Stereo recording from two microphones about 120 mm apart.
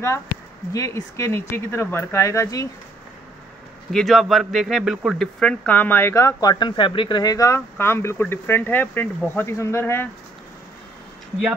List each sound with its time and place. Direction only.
0.7 s speech: 25° left (ahead or behind)
3.9 s speech: centre (ahead or behind); by 10.0 s 20° left (ahead or behind)